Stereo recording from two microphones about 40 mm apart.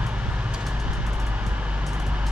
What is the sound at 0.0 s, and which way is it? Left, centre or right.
Vehicle, right.